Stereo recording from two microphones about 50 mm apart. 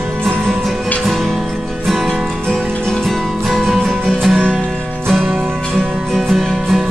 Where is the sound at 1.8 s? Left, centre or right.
Centre.